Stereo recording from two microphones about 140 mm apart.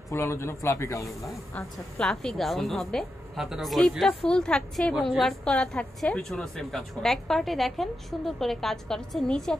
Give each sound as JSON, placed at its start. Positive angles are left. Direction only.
{"t": 0.1, "sound": "a man's voice", "side_deg": 20}
{"t": 1.5, "sound": "a woman's voice", "side_deg": 10}